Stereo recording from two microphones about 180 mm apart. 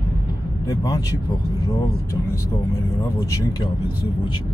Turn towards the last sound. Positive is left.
turn(degrees=20)  # may be behind; listen again after turning